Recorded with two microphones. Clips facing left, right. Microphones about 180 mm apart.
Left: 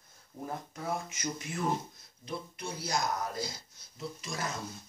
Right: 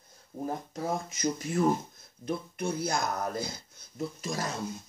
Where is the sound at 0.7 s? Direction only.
35° right (ahead or behind).